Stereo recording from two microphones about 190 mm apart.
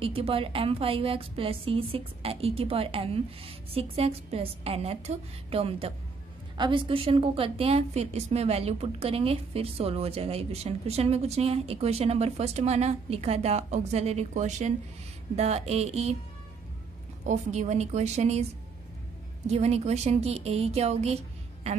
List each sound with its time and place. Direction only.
0.0 s a woman's voice: 30° right (ahead or behind)
17.3 s a woman's voice: 35° right (ahead or behind)